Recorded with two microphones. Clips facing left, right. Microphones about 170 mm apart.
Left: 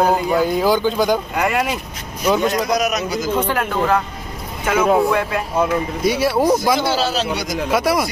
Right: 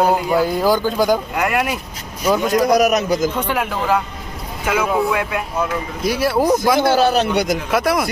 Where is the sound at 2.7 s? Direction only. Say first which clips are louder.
Right 5 dB; 55° right (ahead or behind).